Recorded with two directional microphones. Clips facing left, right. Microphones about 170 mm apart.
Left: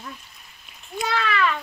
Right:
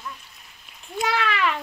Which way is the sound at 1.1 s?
20° right (ahead or behind).